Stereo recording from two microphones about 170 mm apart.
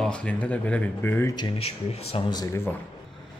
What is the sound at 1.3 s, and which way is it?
Speech, 30° left (ahead or behind).